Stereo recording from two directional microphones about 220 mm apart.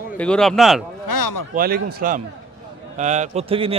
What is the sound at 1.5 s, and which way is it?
A man's voice, 40° right (ahead or behind).